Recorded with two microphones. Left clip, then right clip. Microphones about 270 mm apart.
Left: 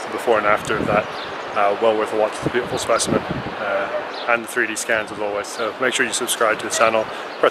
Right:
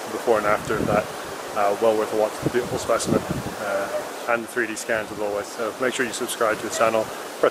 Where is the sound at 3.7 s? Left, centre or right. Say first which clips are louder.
Left 3 dB; centre.